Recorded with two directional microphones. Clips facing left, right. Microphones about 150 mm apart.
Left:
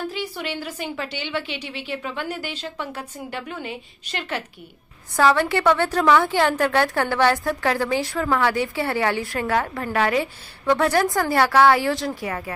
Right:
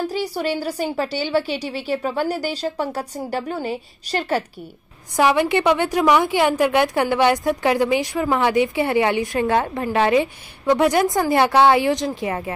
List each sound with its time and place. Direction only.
0.0 s a woman's voice: 35° right (ahead or behind)
5.1 s a woman's voice: 15° right (ahead or behind)